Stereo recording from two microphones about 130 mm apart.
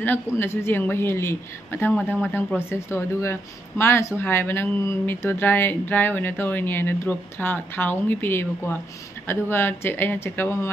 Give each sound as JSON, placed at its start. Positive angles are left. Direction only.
{"t": 0.0, "sound": "a woman's voice", "side_deg": 15}